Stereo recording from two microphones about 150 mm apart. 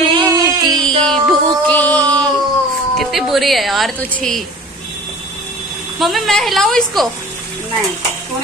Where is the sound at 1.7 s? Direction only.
10° left (ahead or behind).